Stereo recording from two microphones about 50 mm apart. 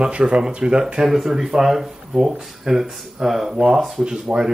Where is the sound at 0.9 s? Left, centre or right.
Centre.